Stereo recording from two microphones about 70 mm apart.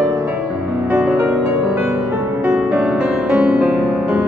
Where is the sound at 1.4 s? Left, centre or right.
Centre.